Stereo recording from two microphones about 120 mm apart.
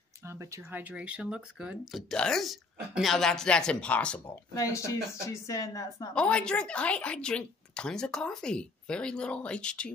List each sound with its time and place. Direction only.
0.3 s speech: 25° right (ahead or behind); by 4.2 s 10° left (ahead or behind)
4.6 s speech: 25° left (ahead or behind)
6.1 s speech: 10° left (ahead or behind)